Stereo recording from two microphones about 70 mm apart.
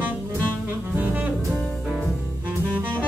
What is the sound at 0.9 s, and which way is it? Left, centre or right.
Saxophone, right.